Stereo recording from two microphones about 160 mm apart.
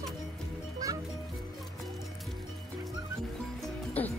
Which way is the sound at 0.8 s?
20° right (ahead or behind).